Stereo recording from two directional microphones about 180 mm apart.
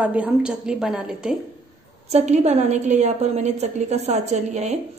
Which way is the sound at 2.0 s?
35° right (ahead or behind).